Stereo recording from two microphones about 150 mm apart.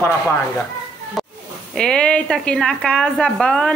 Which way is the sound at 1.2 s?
Centre (ahead or behind).